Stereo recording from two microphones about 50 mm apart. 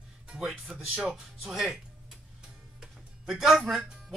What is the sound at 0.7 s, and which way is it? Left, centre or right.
Speech, centre.